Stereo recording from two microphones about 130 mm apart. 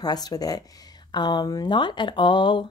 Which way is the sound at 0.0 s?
30° left (ahead or behind).